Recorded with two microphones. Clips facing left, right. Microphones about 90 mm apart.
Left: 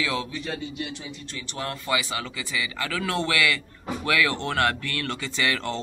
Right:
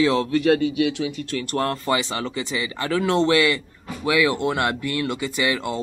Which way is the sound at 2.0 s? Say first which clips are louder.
Right 5 dB; 30° right (ahead or behind).